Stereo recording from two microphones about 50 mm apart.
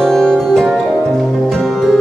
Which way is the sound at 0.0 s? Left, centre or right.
Centre.